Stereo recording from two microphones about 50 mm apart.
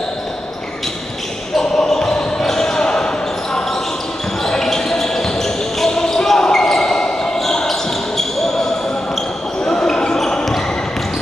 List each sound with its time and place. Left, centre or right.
1.6 s basketball bounce: centre
4.5 s basketball bounce: centre
9.7 s basketball bounce: centre